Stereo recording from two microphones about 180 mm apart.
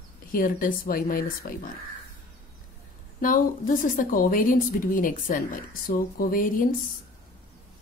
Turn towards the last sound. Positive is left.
turn(degrees=50)  # may be behind; listen again after turning